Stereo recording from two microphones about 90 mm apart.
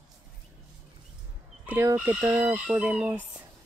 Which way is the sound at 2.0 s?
20° right (ahead or behind).